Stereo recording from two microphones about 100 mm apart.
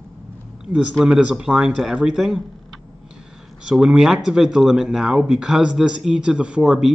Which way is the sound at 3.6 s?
5° right (ahead or behind).